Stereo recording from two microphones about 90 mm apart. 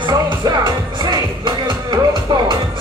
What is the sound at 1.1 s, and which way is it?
Music, 55° right (ahead or behind).